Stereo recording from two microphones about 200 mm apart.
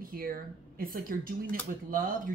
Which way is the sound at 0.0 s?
45° right (ahead or behind).